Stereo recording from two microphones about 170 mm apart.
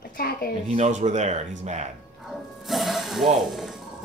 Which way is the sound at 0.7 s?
40° right (ahead or behind).